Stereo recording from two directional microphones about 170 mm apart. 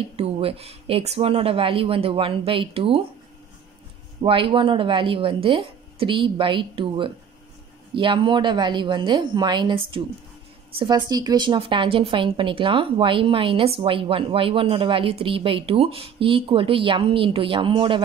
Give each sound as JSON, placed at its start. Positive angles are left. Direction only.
{"t": 0.1, "sound": "a woman's voice", "side_deg": -35}
{"t": 4.2, "sound": "a woman's voice", "side_deg": -30}